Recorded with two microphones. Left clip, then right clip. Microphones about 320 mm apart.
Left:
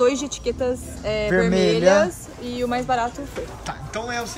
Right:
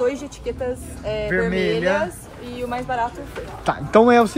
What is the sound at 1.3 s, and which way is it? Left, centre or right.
Speech, centre.